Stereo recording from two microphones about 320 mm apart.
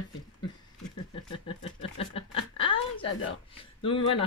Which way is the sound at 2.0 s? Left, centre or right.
Centre.